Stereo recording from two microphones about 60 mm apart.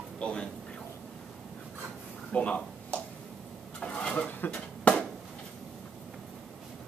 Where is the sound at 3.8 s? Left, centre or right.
Centre.